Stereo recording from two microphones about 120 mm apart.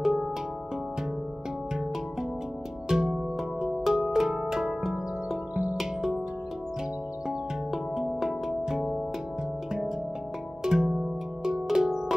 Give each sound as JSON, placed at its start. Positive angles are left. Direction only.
{"t": 0.0, "sound": "music", "side_deg": -5}
{"t": 2.9, "sound": "music", "side_deg": -5}
{"t": 7.2, "sound": "music", "side_deg": -5}
{"t": 10.6, "sound": "music", "side_deg": -5}